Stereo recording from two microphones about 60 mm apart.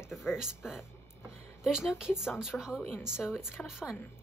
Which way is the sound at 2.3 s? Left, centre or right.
Centre.